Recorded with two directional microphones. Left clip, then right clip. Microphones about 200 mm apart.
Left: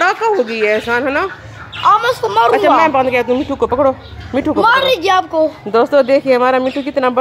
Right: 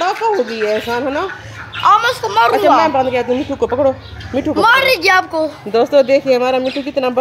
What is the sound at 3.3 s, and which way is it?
Speech, 20° left (ahead or behind).